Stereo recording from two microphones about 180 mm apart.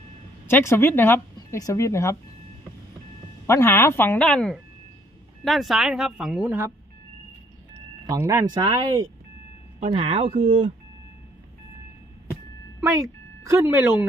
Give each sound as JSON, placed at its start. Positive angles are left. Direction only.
{"t": 0.5, "sound": "speech", "side_deg": 15}
{"t": 3.4, "sound": "speech", "side_deg": 15}
{"t": 8.1, "sound": "speech", "side_deg": -20}
{"t": 9.8, "sound": "speech", "side_deg": -30}
{"t": 12.8, "sound": "speech", "side_deg": -20}